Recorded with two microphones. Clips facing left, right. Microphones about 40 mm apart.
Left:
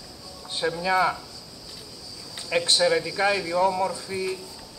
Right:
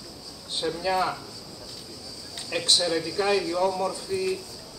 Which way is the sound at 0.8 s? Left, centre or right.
Left.